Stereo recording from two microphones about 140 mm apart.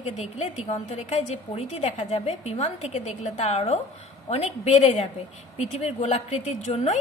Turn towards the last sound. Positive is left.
turn(degrees=50)  # may be behind; listen again after turning